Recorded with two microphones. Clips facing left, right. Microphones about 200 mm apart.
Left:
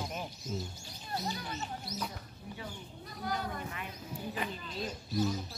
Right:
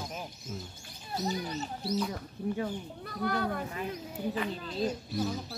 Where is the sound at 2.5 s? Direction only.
55° right (ahead or behind).